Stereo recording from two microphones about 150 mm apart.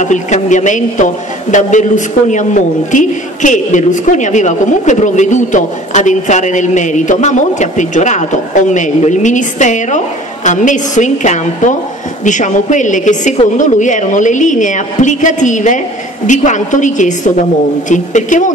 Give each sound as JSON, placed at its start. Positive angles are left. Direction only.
{"t": 0.0, "sound": "a man's voice", "side_deg": 55}